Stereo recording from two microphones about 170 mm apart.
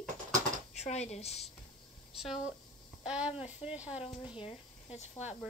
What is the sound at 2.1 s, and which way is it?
Speech, centre (ahead or behind).